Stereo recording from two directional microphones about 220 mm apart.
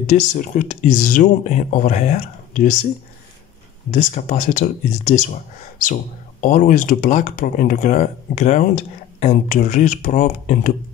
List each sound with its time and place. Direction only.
0.0 s speech: 35° left (ahead or behind)
3.9 s speech: 35° left (ahead or behind)
6.4 s speech: 40° left (ahead or behind)